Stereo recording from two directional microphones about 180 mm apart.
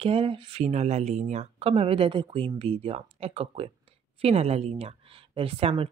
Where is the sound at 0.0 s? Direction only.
30° right (ahead or behind).